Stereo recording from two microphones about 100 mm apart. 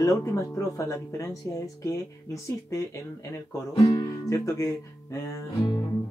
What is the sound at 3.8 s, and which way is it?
Speech, 35° left (ahead or behind).